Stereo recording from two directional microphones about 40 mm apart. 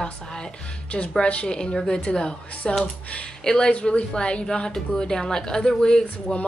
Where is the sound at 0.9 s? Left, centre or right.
Left.